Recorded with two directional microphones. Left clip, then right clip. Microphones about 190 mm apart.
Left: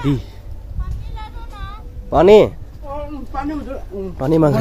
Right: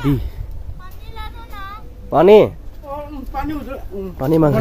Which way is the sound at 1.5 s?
20° right (ahead or behind).